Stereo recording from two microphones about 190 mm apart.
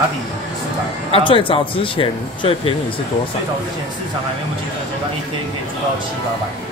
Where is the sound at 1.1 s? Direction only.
25° left (ahead or behind).